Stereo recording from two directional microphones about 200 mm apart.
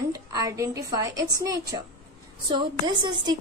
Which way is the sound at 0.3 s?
15° right (ahead or behind).